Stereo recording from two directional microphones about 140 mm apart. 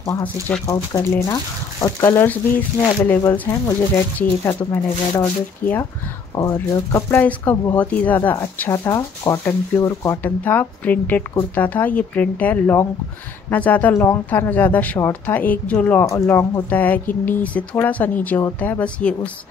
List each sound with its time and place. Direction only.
0.0 s speech: 20° left (ahead or behind)
5.6 s speech: 10° left (ahead or behind)
6.3 s speech: 25° left (ahead or behind); by 19.3 s 10° left (ahead or behind)